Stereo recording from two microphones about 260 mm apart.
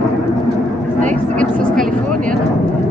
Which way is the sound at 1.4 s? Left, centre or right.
Centre.